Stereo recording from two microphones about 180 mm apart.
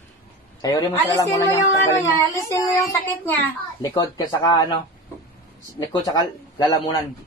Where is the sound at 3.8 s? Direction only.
20° left (ahead or behind).